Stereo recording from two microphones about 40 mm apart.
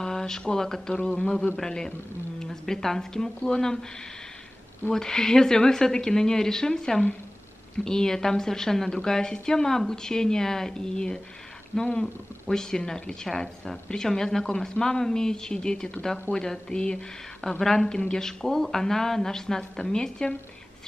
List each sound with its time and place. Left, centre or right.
0.0 s speech: centre
4.9 s speech: centre
12.4 s speech: centre